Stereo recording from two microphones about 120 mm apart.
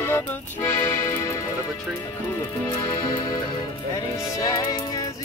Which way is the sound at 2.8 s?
35° left (ahead or behind).